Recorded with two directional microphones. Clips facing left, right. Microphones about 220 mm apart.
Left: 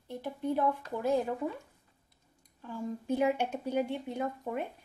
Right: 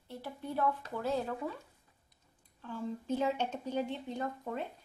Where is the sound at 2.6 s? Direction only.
15° left (ahead or behind).